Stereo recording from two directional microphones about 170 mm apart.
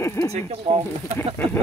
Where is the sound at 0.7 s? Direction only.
30° right (ahead or behind).